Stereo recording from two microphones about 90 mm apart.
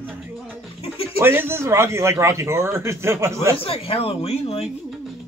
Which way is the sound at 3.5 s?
90° left.